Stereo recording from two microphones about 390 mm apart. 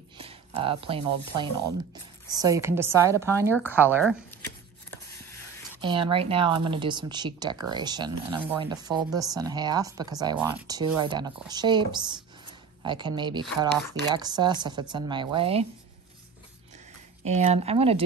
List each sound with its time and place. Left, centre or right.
0.2 s speech: centre
5.8 s speech: centre
17.2 s speech: centre